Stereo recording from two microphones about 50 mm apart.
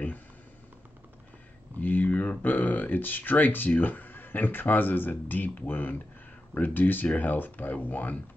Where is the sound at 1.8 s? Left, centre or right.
Left.